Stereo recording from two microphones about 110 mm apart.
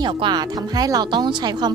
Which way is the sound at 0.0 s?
45° right (ahead or behind).